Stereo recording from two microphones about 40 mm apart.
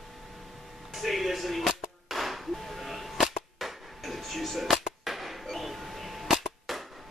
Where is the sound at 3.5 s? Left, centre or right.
Centre.